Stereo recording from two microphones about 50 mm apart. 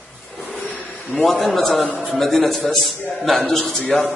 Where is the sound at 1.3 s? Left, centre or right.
Centre.